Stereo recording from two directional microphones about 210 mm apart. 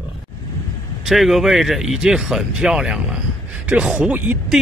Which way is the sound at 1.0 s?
Centre (ahead or behind).